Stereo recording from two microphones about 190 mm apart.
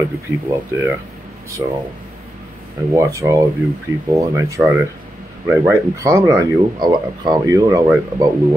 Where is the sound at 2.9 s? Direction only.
15° right (ahead or behind).